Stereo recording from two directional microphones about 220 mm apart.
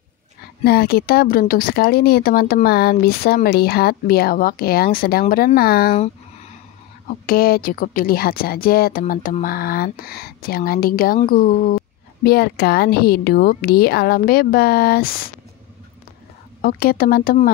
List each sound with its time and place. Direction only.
0.7 s speech: 45° left (ahead or behind)
7.1 s speech: 40° left (ahead or behind)
16.6 s speech: 40° left (ahead or behind)